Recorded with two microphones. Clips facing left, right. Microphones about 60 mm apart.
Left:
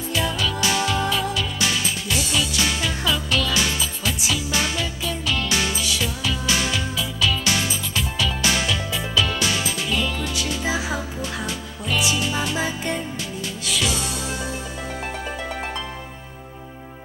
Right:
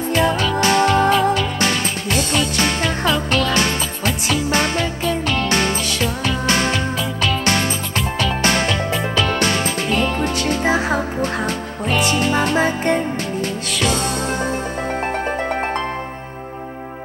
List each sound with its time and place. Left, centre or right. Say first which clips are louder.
0.1 s music: right 6 dB; right